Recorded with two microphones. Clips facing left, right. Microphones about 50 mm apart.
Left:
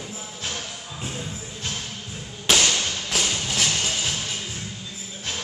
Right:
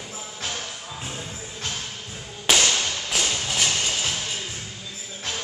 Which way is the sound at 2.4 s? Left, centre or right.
Centre.